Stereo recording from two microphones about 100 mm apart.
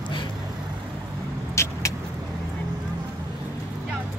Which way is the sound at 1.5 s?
30° left (ahead or behind).